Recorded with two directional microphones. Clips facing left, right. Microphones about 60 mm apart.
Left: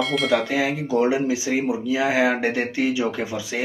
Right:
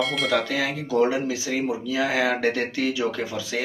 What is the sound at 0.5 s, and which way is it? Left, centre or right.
A man's voice, centre.